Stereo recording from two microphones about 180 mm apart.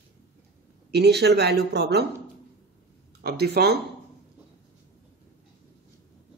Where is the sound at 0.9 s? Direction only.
65° right (ahead or behind).